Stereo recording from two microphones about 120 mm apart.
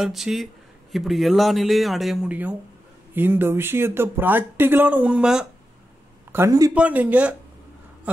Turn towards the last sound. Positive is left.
turn(degrees=-10)  # may be behind; listen again after turning